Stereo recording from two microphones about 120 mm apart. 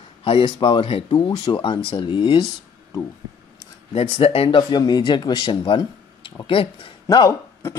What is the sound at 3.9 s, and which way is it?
Speech, 50° left (ahead or behind).